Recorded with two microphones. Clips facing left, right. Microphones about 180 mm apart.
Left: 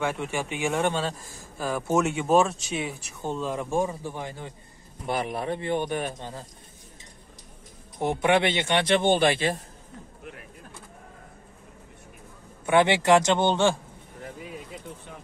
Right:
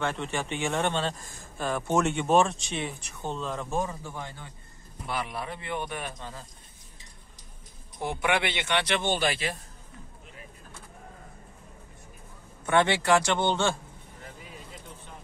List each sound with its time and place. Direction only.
0.0 s speech: 10° left (ahead or behind)
5.5 s speech: 30° left (ahead or behind)
8.0 s speech: 25° left (ahead or behind)
9.0 s speech: 55° left (ahead or behind)
9.3 s speech: 25° left (ahead or behind)
12.6 s speech: 15° left (ahead or behind)